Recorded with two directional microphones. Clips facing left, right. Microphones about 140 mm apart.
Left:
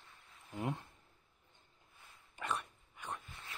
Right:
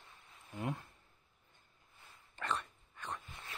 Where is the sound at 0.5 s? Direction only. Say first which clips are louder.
Left 1 dB; 20° left (ahead or behind).